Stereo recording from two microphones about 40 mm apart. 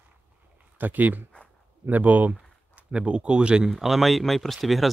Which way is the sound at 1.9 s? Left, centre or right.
Right.